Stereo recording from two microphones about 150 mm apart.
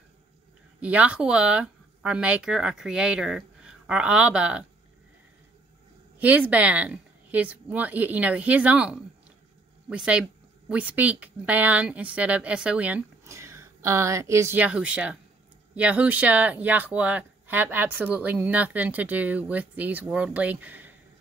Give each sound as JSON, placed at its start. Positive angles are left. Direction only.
{"t": 0.7, "sound": "speech", "side_deg": -10}
{"t": 6.1, "sound": "speech", "side_deg": -10}